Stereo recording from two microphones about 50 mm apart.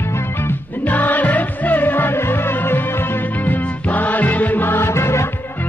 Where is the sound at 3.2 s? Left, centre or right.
Left.